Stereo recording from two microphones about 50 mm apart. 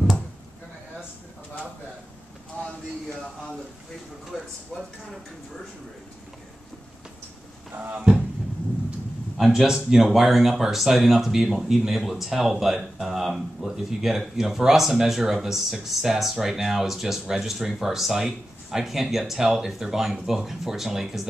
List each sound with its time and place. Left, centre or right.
4.3 s speech: centre
7.7 s speech: right
9.4 s speech: centre